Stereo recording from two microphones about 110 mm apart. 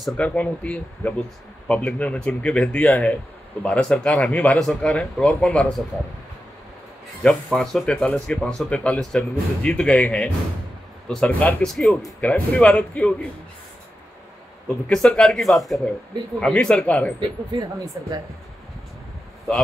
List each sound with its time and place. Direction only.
0.2 s speech: 10° left (ahead or behind)
7.2 s speech: 5° left (ahead or behind)
12.2 s speech: 15° left (ahead or behind)
14.9 s speech: 5° left (ahead or behind)
17.2 s speech: 45° right (ahead or behind)
18.0 s speech: 35° right (ahead or behind)